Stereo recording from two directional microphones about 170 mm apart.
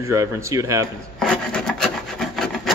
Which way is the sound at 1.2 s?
5° left (ahead or behind).